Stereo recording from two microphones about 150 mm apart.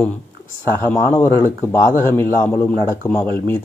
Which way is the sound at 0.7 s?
15° left (ahead or behind).